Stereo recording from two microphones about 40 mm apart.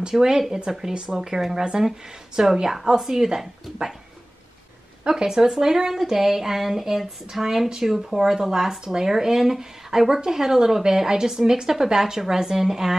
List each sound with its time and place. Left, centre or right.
0.1 s speech: centre
5.1 s speech: centre